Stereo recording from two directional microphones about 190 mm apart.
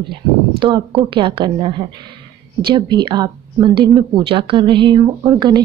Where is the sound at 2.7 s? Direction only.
25° right (ahead or behind).